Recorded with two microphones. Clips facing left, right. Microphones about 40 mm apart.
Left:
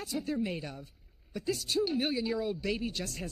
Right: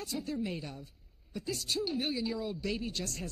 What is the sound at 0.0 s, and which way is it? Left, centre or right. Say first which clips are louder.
Speech: left 3 dB; centre.